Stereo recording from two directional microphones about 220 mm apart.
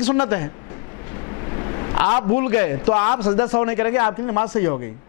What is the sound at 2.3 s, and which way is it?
Speech, 10° left (ahead or behind).